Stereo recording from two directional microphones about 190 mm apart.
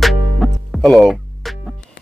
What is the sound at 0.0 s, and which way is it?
Music, centre (ahead or behind).